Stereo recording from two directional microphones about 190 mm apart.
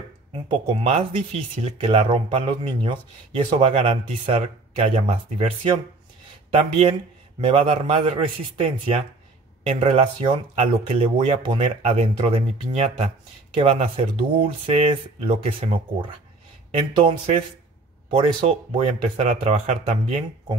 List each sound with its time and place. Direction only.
0.5 s speech: 30° right (ahead or behind)
18.8 s speech: 35° right (ahead or behind)